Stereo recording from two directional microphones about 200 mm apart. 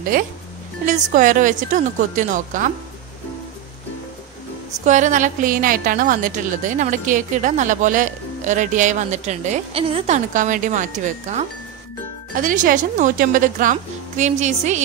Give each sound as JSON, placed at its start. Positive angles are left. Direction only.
{"t": 0.1, "sound": "a woman's voice", "side_deg": -45}
{"t": 4.8, "sound": "a woman's voice", "side_deg": -40}